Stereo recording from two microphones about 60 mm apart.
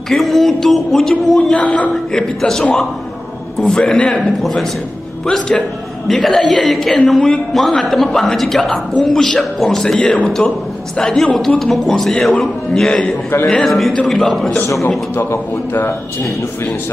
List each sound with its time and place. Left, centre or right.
0.1 s speech: centre
1.5 s a man's voice: left
2.1 s a man's voice: centre
4.4 s a man's voice: centre